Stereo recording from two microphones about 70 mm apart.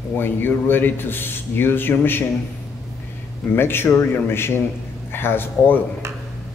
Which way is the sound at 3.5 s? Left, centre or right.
Left.